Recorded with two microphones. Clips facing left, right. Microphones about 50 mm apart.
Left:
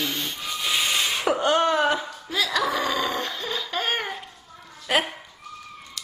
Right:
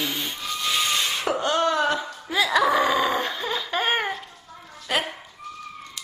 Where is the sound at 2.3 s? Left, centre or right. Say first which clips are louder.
Right 4 dB; centre.